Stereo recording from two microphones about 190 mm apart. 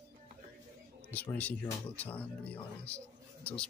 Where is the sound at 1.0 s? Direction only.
10° left (ahead or behind).